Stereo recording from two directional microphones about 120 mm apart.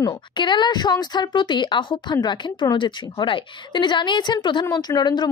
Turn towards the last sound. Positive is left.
turn(degrees=35)  # may be behind; listen again after turning